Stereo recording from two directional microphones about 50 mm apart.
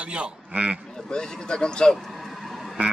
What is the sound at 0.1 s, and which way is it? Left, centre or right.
Speech, right.